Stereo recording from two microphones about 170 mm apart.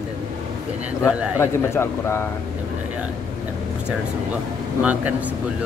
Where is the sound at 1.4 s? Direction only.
15° left (ahead or behind).